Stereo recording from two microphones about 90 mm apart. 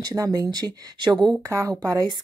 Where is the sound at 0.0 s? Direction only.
40° right (ahead or behind).